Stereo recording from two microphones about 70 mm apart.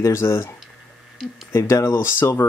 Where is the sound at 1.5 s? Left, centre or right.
Left.